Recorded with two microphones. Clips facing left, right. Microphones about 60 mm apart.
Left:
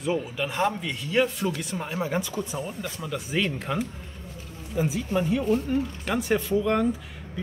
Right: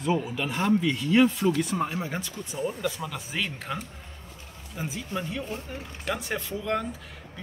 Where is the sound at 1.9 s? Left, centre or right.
Centre.